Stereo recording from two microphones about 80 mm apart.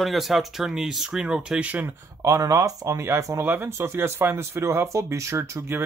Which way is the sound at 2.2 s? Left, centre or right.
Right.